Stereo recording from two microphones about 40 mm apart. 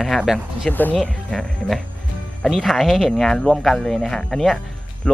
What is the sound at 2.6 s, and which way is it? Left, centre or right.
Speech, centre.